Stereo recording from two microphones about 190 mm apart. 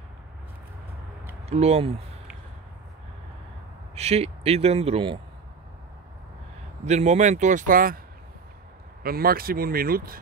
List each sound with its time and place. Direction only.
1.5 s a man's voice: 35° right (ahead or behind)
3.9 s a man's voice: 35° right (ahead or behind)
6.9 s a man's voice: 35° right (ahead or behind)
9.0 s speech: 50° right (ahead or behind)